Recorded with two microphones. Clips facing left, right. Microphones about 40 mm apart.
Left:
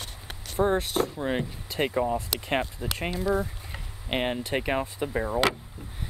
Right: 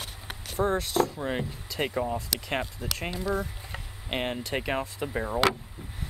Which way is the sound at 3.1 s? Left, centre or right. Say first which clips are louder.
Left 4 dB; centre.